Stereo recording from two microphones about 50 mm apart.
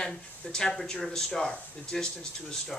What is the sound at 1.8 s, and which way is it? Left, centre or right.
Speech, centre.